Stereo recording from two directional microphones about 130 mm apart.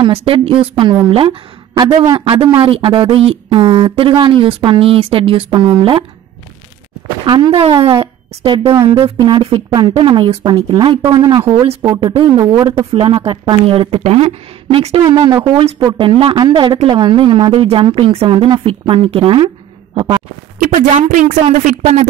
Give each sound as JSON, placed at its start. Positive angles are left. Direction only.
{"t": 0.0, "sound": "a woman's voice", "side_deg": -45}
{"t": 7.2, "sound": "a woman's voice", "side_deg": -40}
{"t": 11.0, "sound": "a woman's voice", "side_deg": -30}
{"t": 15.8, "sound": "a woman's voice", "side_deg": -35}
{"t": 20.5, "sound": "speech", "side_deg": -80}